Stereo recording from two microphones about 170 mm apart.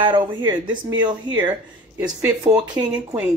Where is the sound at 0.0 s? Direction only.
25° right (ahead or behind).